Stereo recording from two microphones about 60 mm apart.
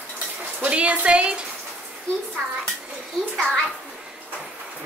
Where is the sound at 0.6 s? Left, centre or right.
Right.